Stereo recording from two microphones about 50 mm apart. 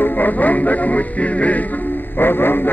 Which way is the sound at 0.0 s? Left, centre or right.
Left.